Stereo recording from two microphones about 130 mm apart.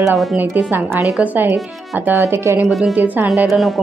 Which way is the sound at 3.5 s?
Centre (ahead or behind).